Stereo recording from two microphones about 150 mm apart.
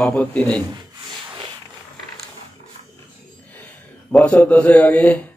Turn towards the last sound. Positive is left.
turn(degrees=10)  # may be behind; listen again after turning